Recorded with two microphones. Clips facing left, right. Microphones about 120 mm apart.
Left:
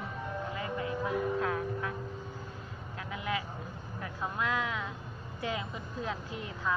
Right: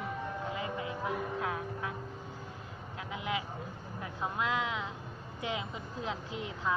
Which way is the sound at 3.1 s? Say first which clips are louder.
Left 1 dB; 20° right (ahead or behind).